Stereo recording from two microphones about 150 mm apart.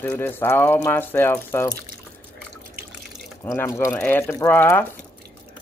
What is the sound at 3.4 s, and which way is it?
Speech, 15° left (ahead or behind).